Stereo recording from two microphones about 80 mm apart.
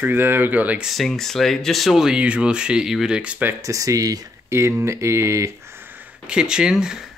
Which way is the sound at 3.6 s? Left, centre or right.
Right.